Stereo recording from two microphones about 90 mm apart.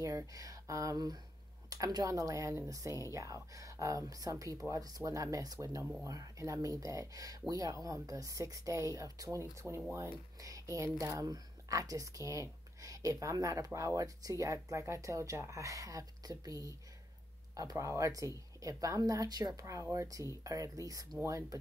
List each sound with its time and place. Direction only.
0.0 s speech: 40° right (ahead or behind)